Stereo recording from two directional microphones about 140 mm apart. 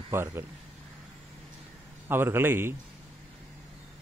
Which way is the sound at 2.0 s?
15° right (ahead or behind).